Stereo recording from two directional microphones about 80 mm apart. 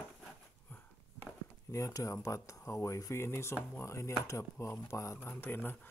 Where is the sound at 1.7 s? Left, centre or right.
Left.